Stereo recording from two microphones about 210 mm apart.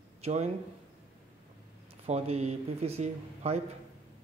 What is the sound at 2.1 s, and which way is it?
Speech, 30° right (ahead or behind).